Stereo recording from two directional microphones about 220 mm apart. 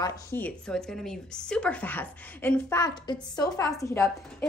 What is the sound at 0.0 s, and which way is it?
A woman's voice, 10° left (ahead or behind).